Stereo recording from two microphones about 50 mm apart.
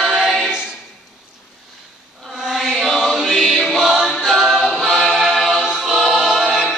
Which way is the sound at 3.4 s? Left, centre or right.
Centre.